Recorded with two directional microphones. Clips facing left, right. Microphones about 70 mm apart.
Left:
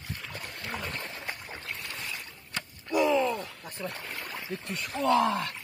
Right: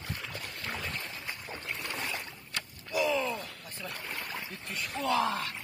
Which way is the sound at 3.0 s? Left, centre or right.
Centre.